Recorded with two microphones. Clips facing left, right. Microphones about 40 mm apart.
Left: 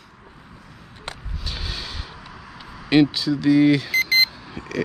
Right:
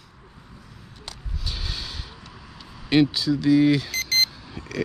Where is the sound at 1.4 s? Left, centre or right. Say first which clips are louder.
Left 1 dB; centre.